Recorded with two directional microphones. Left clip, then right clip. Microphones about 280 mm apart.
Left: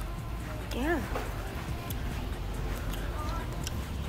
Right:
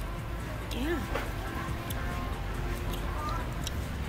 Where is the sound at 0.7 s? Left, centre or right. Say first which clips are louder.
Left 3 dB; centre.